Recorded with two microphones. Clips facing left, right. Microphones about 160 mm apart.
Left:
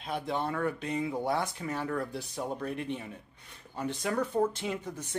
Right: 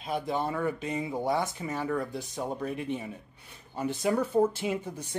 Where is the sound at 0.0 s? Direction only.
Centre (ahead or behind).